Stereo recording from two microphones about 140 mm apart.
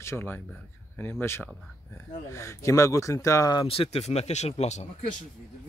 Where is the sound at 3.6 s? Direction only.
40° left (ahead or behind).